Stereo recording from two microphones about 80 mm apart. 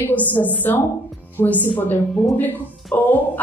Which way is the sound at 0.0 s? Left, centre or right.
Left.